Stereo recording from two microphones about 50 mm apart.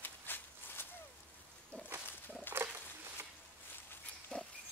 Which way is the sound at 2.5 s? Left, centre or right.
Right.